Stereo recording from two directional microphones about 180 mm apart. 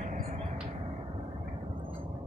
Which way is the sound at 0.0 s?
45° right (ahead or behind).